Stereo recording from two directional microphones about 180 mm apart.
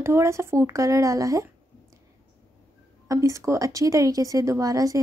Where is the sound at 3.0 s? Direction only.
15° right (ahead or behind).